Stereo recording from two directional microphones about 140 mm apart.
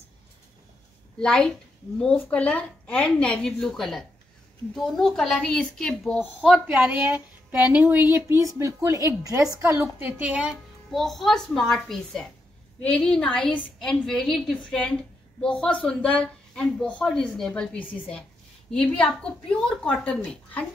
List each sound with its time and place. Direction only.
1.2 s a woman's voice: 5° left (ahead or behind)
6.4 s a woman's voice: 5° right (ahead or behind)